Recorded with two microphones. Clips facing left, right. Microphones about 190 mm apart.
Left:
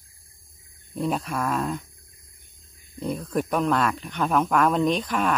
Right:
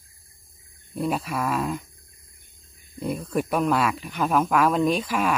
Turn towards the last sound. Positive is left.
turn(degrees=-5)  # may be behind; listen again after turning